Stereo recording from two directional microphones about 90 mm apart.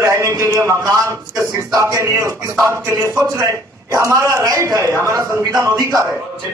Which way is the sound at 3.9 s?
35° right (ahead or behind).